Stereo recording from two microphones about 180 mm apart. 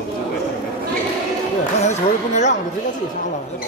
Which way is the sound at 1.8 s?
40° left (ahead or behind).